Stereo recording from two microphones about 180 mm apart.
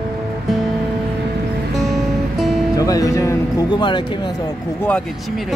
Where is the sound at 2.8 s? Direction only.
20° left (ahead or behind).